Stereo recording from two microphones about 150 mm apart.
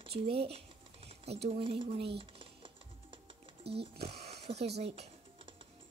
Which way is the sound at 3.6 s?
90° right.